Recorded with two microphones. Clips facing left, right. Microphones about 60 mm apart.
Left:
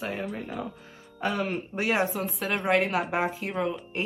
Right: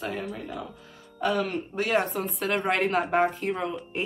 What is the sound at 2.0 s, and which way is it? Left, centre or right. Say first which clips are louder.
Speech: right 1 dB; centre.